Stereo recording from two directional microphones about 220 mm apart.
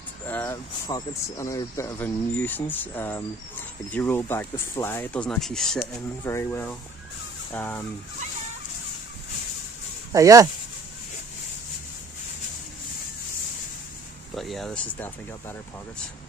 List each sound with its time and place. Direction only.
0.3 s speech: 10° left (ahead or behind)
6.2 s speech: 10° left (ahead or behind)
10.1 s speech: 15° right (ahead or behind)
14.3 s speech: centre (ahead or behind)